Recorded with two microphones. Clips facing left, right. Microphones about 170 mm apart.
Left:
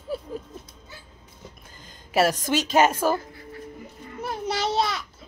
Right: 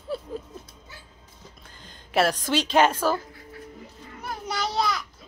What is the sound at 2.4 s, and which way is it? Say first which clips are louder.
Speech: even; 45° left (ahead or behind).